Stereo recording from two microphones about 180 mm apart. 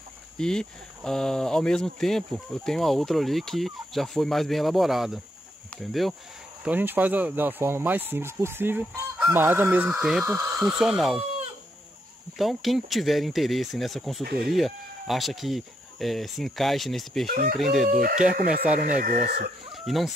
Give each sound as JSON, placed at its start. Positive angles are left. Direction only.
{"t": 0.4, "sound": "speech", "side_deg": 5}
{"t": 10.2, "sound": "speech", "side_deg": -20}
{"t": 10.6, "sound": "speech", "side_deg": -5}
{"t": 12.4, "sound": "speech", "side_deg": 0}
{"t": 14.2, "sound": "speech", "side_deg": -60}
{"t": 14.5, "sound": "speech", "side_deg": 0}
{"t": 17.3, "sound": "speech", "side_deg": -55}
{"t": 17.6, "sound": "speech", "side_deg": 0}
{"t": 18.8, "sound": "speech", "side_deg": -50}
{"t": 19.7, "sound": "chicken", "side_deg": 0}